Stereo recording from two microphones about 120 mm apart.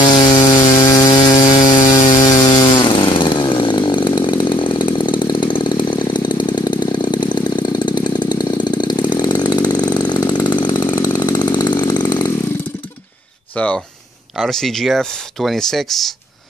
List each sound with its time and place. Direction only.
0.1 s chainsaw: 35° left (ahead or behind)
0.7 s sawing: 35° left (ahead or behind)
1.5 s a sound: 30° left (ahead or behind)
2.1 s chainsaw: 35° left (ahead or behind)
14.4 s speech: 5° left (ahead or behind)